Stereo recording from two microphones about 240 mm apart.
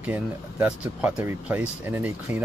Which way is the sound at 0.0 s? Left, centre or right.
Centre.